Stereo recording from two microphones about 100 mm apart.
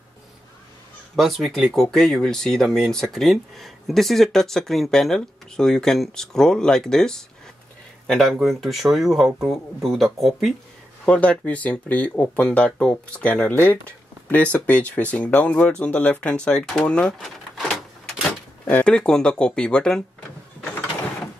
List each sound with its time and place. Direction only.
1.1 s speech: centre (ahead or behind)
11.1 s speech: 15° left (ahead or behind)